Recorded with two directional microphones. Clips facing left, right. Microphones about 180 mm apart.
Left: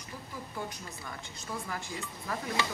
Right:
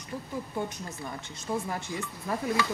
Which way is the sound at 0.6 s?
25° right (ahead or behind).